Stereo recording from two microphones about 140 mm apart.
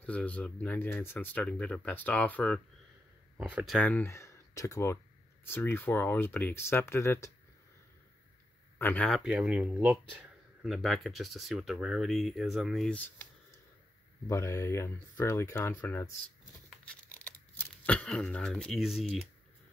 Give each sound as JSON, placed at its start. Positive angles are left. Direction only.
{"t": 0.0, "sound": "speech", "side_deg": 10}
{"t": 3.3, "sound": "speech", "side_deg": -10}
{"t": 3.7, "sound": "speech", "side_deg": 10}
{"t": 8.7, "sound": "speech", "side_deg": 10}
{"t": 9.2, "sound": "speech", "side_deg": -10}
{"t": 14.2, "sound": "speech", "side_deg": 20}
{"t": 16.8, "sound": "tearing", "side_deg": 10}